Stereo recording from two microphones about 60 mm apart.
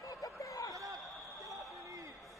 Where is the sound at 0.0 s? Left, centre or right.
Left.